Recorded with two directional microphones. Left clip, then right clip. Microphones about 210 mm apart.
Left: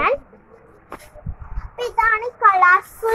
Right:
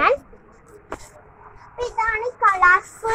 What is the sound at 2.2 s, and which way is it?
Speech, 45° left (ahead or behind).